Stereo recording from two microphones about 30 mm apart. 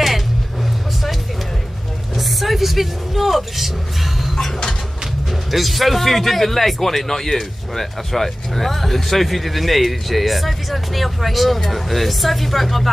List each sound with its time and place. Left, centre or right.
2.1 s vehicle: centre
5.5 s a man's voice: centre